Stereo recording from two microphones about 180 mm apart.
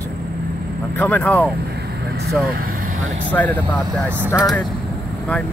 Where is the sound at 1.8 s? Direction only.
65° right (ahead or behind).